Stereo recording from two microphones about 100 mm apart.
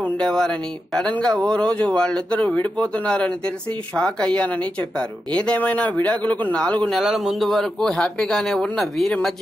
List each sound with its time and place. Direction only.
0.0 s speech: 5° left (ahead or behind)